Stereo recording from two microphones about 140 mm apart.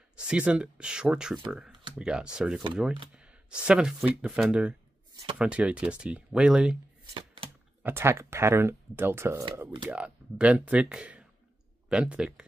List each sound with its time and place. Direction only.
0.1 s speech: 5° right (ahead or behind)
7.8 s speech: 15° right (ahead or behind)